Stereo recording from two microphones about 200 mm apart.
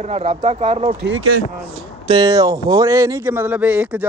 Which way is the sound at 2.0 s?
20° right (ahead or behind).